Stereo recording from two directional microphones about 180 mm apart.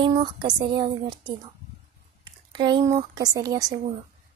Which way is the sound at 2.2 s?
25° right (ahead or behind).